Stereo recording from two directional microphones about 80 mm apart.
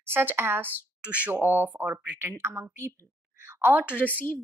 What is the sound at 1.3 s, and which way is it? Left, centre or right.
A woman's voice, right.